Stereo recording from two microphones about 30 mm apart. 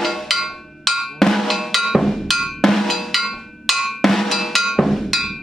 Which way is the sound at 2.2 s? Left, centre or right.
Centre.